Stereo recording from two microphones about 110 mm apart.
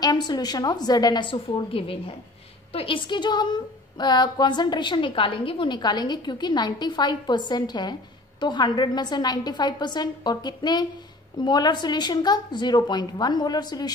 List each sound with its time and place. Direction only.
0.0 s a woman's voice: 40° left (ahead or behind)